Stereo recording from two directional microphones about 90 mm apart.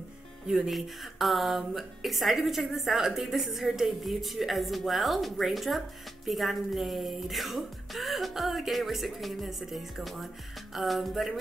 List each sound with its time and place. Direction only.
0.5 s speech: 5° right (ahead or behind)